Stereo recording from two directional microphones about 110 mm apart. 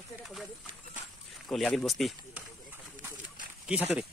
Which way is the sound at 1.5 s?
5° left (ahead or behind).